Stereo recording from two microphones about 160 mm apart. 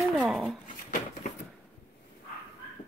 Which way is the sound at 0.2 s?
Centre (ahead or behind).